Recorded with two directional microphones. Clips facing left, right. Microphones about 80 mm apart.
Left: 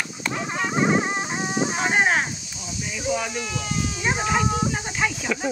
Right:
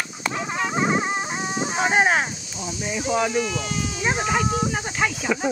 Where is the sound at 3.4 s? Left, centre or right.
Centre.